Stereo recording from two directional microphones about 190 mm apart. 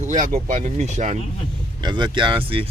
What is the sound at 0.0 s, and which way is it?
Speech, 40° right (ahead or behind).